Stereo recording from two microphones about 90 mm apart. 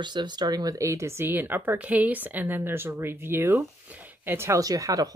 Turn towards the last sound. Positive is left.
turn(degrees=-40)  # may be behind; listen again after turning